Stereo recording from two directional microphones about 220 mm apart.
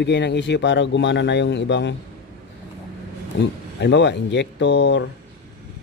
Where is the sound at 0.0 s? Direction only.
50° left (ahead or behind).